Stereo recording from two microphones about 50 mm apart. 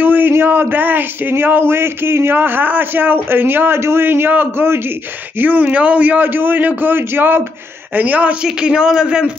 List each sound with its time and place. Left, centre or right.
0.0 s a sound: right
0.3 s a man's voice: right
1.3 s a man's voice: right
4.6 s a man's voice: right
5.4 s a man's voice: right
7.9 s a man's voice: right
8.5 s a man's voice: centre